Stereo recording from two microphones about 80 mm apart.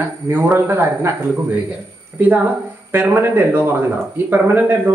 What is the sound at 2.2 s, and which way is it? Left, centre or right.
Speech, right.